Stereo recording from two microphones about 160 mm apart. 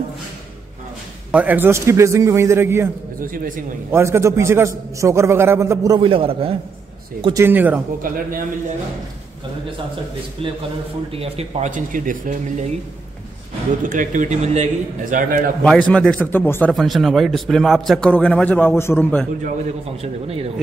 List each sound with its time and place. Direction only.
1.3 s a man's voice: 10° right (ahead or behind)
3.2 s a man's voice: 60° right (ahead or behind)
3.9 s a man's voice: 15° right (ahead or behind)
5.9 s a man's voice: 35° right (ahead or behind)
7.3 s a man's voice: 10° right (ahead or behind)
8.0 s a man's voice: 60° right (ahead or behind)
11.1 s a man's voice: 40° right (ahead or behind); by 12.6 s 55° right (ahead or behind)
13.8 s a man's voice: 55° right (ahead or behind)
15.6 s speech: 5° left (ahead or behind)
16.7 s a man's voice: centre (ahead or behind)
20.0 s a man's voice: 40° right (ahead or behind)